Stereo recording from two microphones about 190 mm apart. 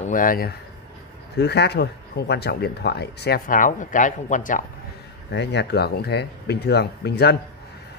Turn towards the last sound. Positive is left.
turn(degrees=60)  # may be behind; listen again after turning